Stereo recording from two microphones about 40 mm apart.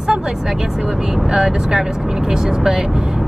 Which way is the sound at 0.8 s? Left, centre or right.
Centre.